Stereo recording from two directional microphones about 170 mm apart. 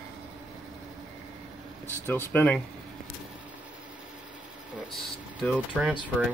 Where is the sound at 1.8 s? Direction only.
10° left (ahead or behind).